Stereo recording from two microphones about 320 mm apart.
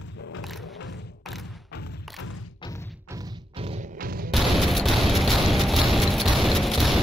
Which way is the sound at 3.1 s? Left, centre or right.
Centre.